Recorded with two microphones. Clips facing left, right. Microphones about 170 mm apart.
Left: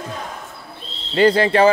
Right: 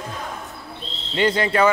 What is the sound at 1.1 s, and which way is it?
Speech, 35° left (ahead or behind).